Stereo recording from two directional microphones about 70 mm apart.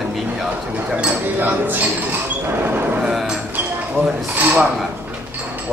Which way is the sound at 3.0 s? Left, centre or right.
Centre.